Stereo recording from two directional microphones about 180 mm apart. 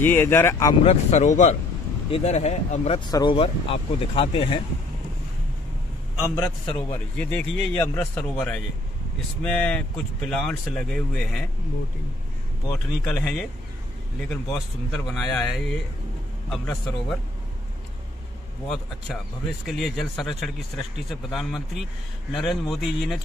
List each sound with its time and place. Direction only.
0.0 s a man's voice: 10° left (ahead or behind)
0.8 s speech: 40° left (ahead or behind)
3.1 s speech: 25° left (ahead or behind)
6.3 s speech: 30° left (ahead or behind)
6.9 s a man's voice: 5° left (ahead or behind)
12.7 s speech: 5° left (ahead or behind)
19.6 s speech: centre (ahead or behind)